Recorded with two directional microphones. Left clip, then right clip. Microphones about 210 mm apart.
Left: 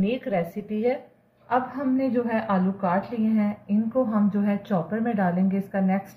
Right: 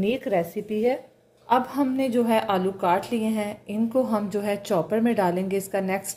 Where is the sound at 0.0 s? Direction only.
45° right (ahead or behind).